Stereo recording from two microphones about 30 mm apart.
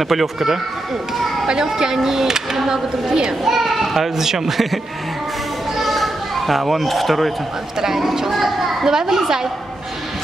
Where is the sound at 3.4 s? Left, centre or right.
Centre.